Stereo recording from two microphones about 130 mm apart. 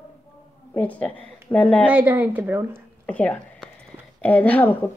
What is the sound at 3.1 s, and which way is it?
Speech, 10° left (ahead or behind).